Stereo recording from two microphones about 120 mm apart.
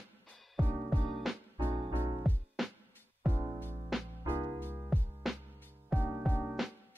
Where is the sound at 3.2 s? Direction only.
15° right (ahead or behind).